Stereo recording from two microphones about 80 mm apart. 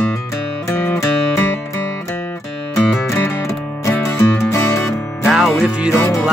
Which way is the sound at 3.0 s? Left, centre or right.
Left.